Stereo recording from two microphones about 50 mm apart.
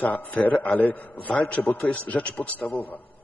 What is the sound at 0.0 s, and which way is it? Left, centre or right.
A man's voice, left.